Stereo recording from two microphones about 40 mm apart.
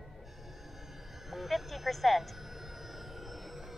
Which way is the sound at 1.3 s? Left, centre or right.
Centre.